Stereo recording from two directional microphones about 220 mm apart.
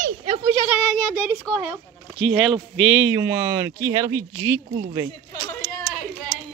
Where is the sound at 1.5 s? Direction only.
5° left (ahead or behind); by 4.6 s 15° right (ahead or behind).